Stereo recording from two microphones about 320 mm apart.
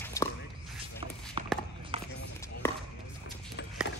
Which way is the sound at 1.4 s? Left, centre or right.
Centre.